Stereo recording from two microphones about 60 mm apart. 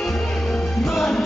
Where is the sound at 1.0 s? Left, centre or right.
Centre.